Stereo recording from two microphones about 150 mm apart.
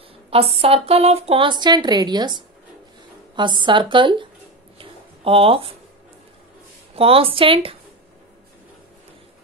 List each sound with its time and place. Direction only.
0.3 s a woman's voice: 40° right (ahead or behind)
4.7 s a sound: 40° right (ahead or behind)
7.0 s a woman's voice: 40° right (ahead or behind)